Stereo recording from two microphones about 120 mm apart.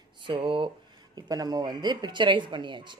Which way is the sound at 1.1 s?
35° right (ahead or behind).